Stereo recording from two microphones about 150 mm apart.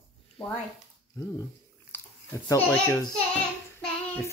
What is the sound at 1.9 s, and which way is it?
A child's voice, 20° left (ahead or behind).